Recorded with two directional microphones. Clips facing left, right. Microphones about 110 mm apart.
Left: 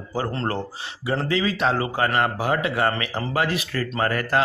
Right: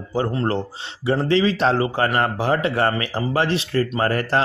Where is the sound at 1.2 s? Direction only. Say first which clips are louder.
Right 4 dB; 30° right (ahead or behind).